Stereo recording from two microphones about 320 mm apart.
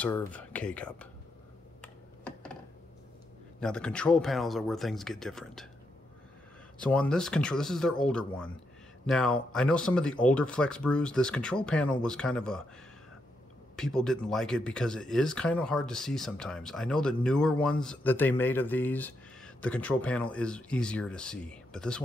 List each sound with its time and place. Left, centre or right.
0.0 s speech: centre
1.8 s computer keyboard: centre
3.6 s speech: centre
6.8 s speech: centre
13.7 s speech: centre